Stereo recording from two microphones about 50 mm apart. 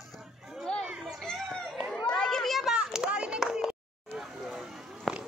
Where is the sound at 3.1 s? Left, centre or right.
Centre.